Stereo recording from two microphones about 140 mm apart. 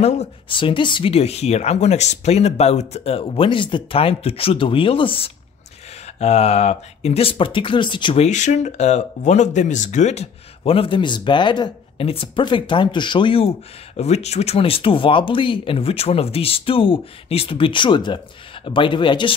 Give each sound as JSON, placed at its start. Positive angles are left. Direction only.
{"t": 0.0, "sound": "speech", "side_deg": 50}
{"t": 0.5, "sound": "speech", "side_deg": 35}
{"t": 6.0, "sound": "speech", "side_deg": 50}
{"t": 8.2, "sound": "speech", "side_deg": 60}